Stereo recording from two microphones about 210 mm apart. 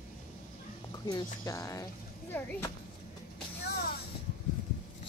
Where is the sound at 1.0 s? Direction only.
15° left (ahead or behind).